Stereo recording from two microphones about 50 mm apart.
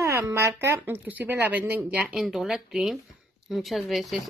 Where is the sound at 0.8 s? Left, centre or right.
Right.